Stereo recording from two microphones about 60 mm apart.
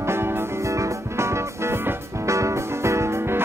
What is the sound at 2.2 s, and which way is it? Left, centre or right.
Music, right.